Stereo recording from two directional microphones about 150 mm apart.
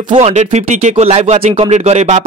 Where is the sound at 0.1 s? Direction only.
45° right (ahead or behind).